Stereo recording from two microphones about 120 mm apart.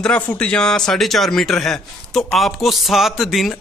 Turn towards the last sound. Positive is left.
turn(degrees=0)  # may be behind; listen again after turning